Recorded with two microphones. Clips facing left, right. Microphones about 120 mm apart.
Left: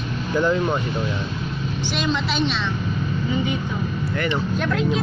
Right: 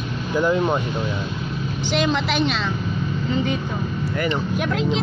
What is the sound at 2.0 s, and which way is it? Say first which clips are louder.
Speech: right 2 dB; 50° right (ahead or behind).